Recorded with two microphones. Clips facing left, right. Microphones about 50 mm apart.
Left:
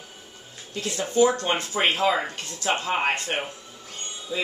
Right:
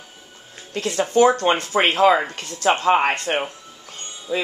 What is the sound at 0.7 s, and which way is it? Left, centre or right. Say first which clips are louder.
Speech: right 4 dB; right.